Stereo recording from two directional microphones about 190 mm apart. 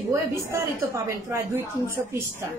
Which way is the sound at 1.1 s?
15° right (ahead or behind).